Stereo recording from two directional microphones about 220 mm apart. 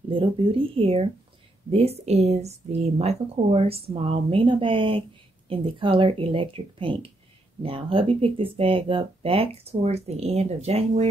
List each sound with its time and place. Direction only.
0.1 s speech: 25° right (ahead or behind)